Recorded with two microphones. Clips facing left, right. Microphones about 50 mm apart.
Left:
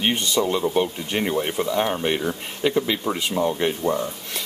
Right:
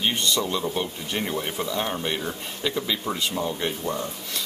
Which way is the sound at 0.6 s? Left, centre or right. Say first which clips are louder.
Left 6 dB; left.